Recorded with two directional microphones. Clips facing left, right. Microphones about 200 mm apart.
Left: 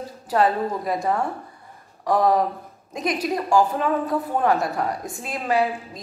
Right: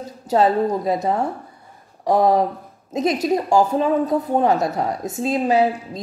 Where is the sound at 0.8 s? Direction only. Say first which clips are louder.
Right 3 dB; 20° right (ahead or behind).